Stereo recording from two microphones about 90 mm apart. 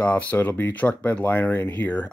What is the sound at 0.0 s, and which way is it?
Speech, 15° left (ahead or behind).